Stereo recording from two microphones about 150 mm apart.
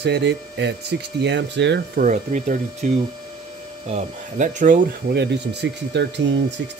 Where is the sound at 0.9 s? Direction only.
90° right.